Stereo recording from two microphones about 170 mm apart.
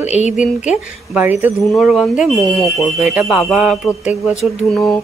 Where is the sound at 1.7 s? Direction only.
Centre (ahead or behind).